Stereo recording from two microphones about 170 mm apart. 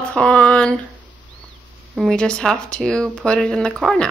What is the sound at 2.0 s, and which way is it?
Speech, 5° left (ahead or behind).